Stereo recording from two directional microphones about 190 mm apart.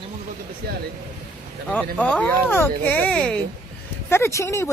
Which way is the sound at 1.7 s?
5° left (ahead or behind).